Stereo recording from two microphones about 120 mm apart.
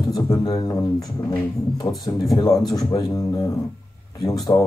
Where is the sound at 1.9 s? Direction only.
30° left (ahead or behind).